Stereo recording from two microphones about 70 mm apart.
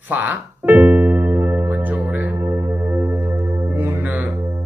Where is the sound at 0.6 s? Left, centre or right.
Right.